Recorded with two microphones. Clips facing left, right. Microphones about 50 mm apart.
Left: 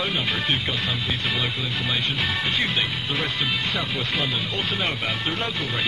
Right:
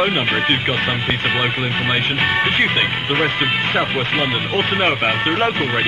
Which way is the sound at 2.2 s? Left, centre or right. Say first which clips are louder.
Right 11 dB; right.